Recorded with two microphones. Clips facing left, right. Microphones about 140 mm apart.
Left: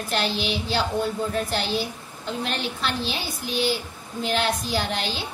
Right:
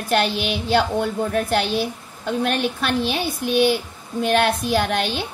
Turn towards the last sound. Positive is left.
turn(degrees=-60)  # may be behind; listen again after turning